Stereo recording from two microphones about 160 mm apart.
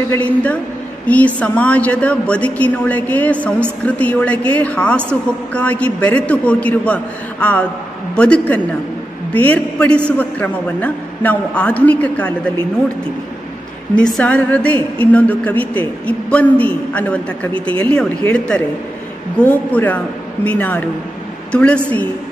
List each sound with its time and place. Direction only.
0.1 s a woman's voice: 10° left (ahead or behind)
13.9 s a woman's voice: 5° left (ahead or behind)
17.5 s speech: 35° right (ahead or behind)
17.8 s a woman's voice: 10° left (ahead or behind)